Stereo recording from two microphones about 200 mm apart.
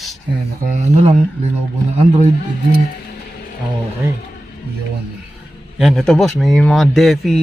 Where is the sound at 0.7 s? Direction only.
35° right (ahead or behind).